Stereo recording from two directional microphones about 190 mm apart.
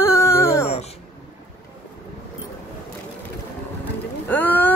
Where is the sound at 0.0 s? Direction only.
15° left (ahead or behind).